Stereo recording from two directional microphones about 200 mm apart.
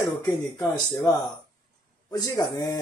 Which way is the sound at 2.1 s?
20° left (ahead or behind).